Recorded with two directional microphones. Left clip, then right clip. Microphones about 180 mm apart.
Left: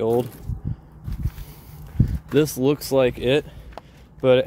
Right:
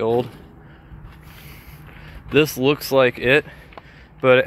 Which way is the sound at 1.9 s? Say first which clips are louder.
Right 3 dB; 20° left (ahead or behind).